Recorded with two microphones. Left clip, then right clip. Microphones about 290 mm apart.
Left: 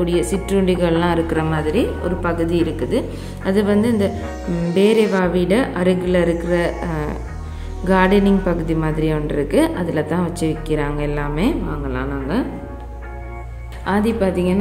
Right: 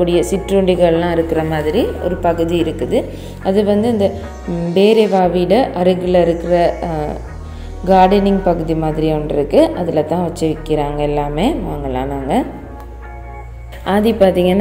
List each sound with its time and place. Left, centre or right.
0.7 s a woman's voice: centre
12.0 s a sound: centre
13.8 s a woman's voice: centre